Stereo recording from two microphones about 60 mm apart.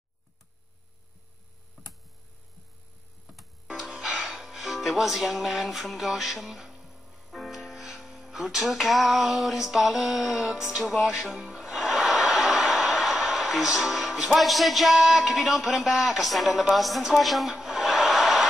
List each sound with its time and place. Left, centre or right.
3.6 s music: centre
10.4 s speech: centre